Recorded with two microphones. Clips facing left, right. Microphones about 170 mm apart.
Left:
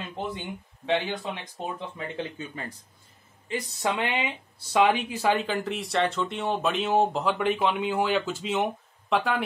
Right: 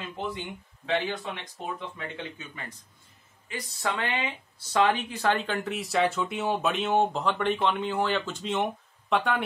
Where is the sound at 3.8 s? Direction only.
15° left (ahead or behind).